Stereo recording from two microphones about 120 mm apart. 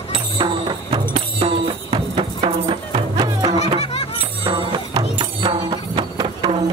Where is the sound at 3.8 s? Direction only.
60° left (ahead or behind).